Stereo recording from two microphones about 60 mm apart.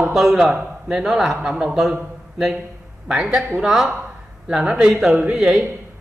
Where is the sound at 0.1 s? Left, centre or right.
Centre.